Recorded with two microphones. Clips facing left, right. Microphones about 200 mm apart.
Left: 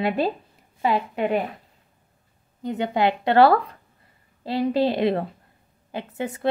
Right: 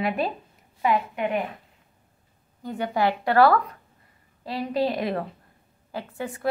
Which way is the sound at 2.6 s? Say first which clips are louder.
Left 3 dB; 20° left (ahead or behind).